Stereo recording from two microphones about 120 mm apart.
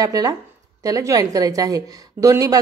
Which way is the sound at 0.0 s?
30° right (ahead or behind).